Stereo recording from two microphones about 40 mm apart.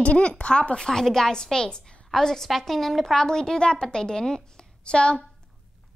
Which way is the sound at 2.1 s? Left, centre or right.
Centre.